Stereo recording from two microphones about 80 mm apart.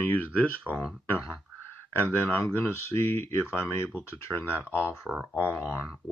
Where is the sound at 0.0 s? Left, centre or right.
Left.